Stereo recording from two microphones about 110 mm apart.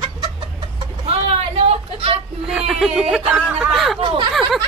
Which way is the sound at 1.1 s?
65° right (ahead or behind).